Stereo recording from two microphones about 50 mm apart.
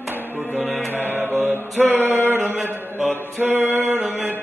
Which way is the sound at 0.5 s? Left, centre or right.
Left.